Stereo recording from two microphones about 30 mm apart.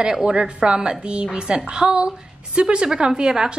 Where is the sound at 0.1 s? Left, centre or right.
Right.